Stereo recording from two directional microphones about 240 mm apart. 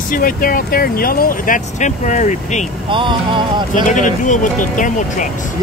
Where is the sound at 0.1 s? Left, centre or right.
Left.